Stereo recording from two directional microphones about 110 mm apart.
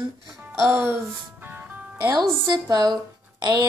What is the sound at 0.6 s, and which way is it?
Music, 20° right (ahead or behind).